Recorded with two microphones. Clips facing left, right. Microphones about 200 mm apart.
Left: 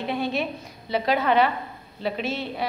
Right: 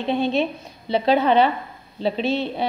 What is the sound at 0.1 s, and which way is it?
A woman's voice, 25° right (ahead or behind).